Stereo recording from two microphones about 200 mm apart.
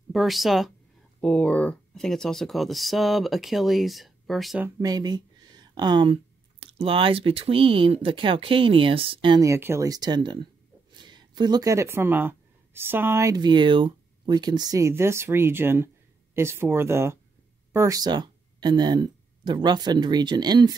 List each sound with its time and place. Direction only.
0.1 s speech: centre (ahead or behind)
4.6 s speech: 20° right (ahead or behind)